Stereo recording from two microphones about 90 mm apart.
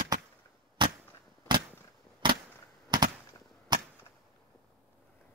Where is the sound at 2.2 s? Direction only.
60° right (ahead or behind).